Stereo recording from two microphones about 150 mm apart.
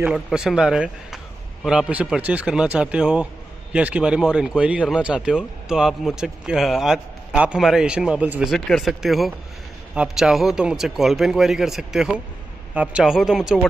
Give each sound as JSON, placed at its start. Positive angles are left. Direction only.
{"t": 0.0, "sound": "speech", "side_deg": -5}